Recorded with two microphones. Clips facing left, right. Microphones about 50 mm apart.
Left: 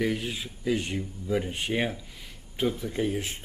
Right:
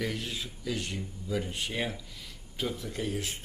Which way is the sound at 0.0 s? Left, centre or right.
Centre.